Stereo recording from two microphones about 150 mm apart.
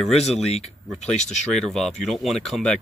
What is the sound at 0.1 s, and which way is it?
Speech, 45° left (ahead or behind).